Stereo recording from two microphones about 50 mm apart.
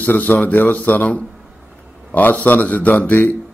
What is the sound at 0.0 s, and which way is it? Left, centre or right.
A man's voice, left.